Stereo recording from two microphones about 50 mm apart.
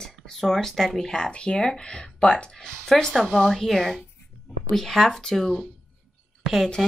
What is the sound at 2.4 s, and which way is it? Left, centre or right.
A woman's voice, centre.